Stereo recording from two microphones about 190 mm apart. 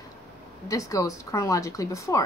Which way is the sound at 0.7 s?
15° left (ahead or behind).